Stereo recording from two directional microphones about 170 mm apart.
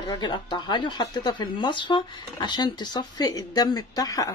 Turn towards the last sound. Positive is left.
turn(degrees=20)  # may be behind; listen again after turning